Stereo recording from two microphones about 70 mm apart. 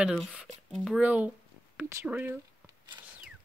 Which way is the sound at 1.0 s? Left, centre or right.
Right.